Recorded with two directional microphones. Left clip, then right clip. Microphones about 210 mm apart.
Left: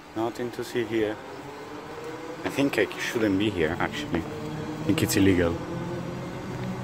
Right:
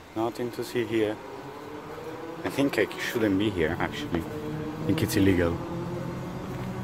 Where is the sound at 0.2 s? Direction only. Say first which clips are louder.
Even; 5° right (ahead or behind).